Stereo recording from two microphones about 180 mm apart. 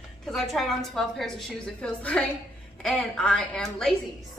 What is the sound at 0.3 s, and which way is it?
A woman's voice, centre (ahead or behind).